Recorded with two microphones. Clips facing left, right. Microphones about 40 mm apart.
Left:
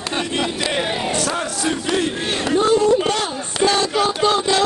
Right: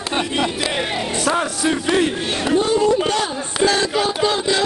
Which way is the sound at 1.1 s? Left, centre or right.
Centre.